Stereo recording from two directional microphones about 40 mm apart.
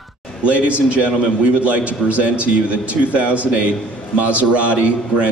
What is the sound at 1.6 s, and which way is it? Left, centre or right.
A man's voice, right.